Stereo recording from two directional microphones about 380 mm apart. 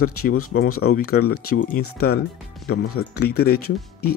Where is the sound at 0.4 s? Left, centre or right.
Left.